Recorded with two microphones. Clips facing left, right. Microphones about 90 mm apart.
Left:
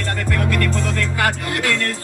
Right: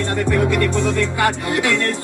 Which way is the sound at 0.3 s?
15° right (ahead or behind).